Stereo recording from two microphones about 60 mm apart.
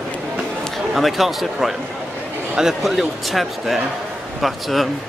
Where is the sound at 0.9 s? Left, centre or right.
Centre.